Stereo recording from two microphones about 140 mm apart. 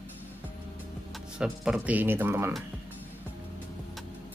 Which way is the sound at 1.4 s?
10° right (ahead or behind).